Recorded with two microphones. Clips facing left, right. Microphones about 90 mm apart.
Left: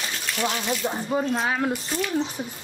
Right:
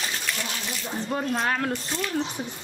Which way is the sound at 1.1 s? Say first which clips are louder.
Left 1 dB; 5° left (ahead or behind).